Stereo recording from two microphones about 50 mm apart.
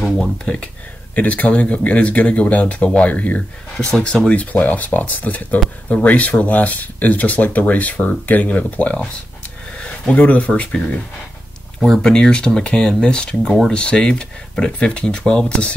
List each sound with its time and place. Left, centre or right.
1.1 s speech: left
4.3 s speech: left
9.8 s a sound: centre
10.1 s speech: left
11.9 s speech: centre